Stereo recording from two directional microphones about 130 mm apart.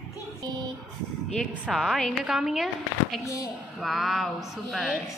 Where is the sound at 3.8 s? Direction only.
Centre (ahead or behind).